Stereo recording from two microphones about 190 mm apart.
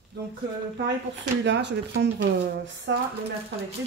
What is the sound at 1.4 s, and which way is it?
Speech, 65° right (ahead or behind).